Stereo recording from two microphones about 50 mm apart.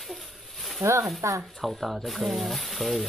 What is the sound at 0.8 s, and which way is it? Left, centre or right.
Speech, right.